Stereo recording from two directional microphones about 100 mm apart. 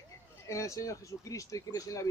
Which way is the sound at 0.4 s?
30° left (ahead or behind).